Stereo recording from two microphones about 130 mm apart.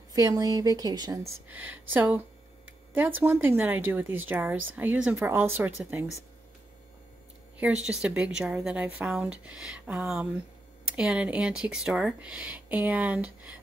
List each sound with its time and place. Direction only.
0.1 s a woman's voice: 25° right (ahead or behind)
1.5 s speech: 15° right (ahead or behind)
7.6 s speech: 5° right (ahead or behind)